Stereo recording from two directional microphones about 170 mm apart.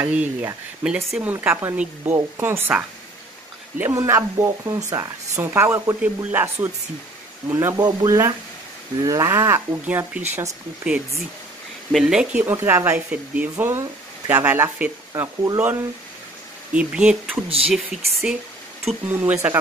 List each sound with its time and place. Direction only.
0.0 s speech: 10° right (ahead or behind)
16.7 s speech: 5° right (ahead or behind)
19.4 s speech: 10° right (ahead or behind)